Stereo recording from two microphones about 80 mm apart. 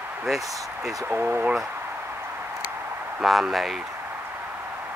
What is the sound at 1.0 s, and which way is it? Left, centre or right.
Speech, right.